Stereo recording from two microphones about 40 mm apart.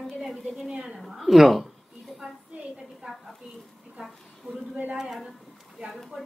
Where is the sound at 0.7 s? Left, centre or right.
Centre.